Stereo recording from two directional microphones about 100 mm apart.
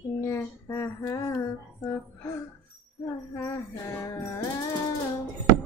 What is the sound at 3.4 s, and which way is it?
Child singing, 30° left (ahead or behind).